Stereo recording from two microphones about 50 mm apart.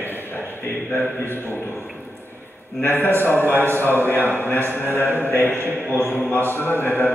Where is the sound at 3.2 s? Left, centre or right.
Left.